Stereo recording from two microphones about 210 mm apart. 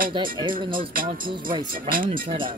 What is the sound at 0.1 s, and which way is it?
Speech, 25° right (ahead or behind).